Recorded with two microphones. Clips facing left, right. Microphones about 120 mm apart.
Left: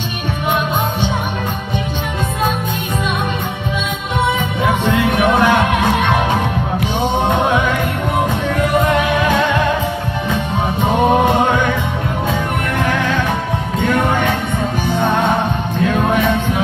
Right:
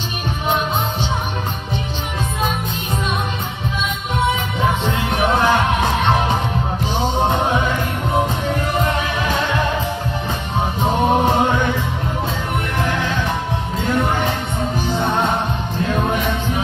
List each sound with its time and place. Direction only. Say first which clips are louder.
4.3 s music: left 3 dB; 60° left (ahead or behind)
10.8 s music: left 3 dB; 55° left (ahead or behind)
12.8 s music: left 5 dB; 55° left (ahead or behind)